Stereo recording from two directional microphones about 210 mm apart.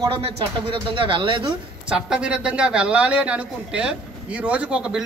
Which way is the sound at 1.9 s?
5° right (ahead or behind).